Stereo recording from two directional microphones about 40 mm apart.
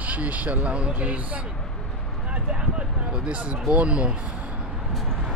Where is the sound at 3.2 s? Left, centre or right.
Right.